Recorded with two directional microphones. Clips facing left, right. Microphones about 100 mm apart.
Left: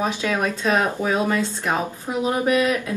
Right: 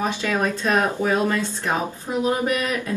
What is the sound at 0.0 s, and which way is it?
Speech, 15° left (ahead or behind).